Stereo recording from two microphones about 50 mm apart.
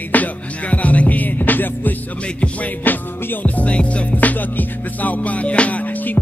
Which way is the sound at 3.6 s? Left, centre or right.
Left.